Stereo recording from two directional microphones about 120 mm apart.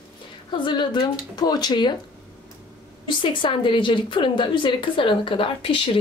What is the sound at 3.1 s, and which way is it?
A woman's voice, 40° left (ahead or behind).